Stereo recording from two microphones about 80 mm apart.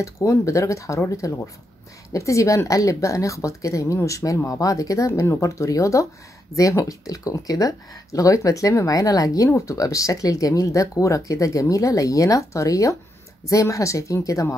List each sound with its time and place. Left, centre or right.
0.0 s speech: left